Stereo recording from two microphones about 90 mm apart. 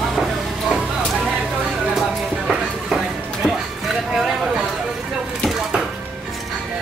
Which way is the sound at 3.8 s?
Centre (ahead or behind).